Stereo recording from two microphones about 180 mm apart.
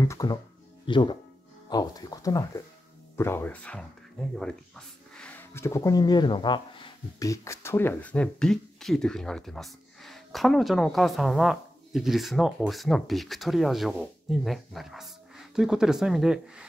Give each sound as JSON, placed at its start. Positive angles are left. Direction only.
{"t": 0.0, "sound": "speech", "side_deg": 20}